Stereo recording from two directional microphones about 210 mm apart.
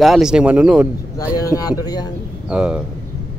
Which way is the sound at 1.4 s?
15° left (ahead or behind).